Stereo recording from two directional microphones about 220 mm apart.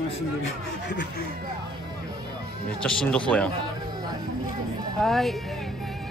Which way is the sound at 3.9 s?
20° right (ahead or behind).